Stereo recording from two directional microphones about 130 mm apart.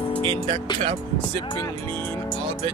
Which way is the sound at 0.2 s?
40° right (ahead or behind).